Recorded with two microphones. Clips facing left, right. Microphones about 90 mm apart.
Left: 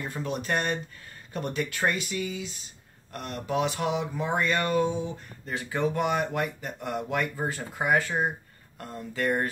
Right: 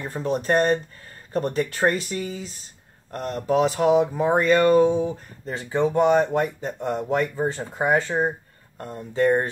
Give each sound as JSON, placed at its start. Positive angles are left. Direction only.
{"t": 0.0, "sound": "speech", "side_deg": -35}